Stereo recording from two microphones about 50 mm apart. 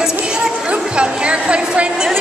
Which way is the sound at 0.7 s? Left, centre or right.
Right.